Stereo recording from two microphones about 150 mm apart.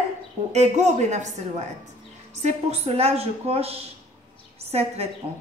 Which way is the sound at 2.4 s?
45° right (ahead or behind).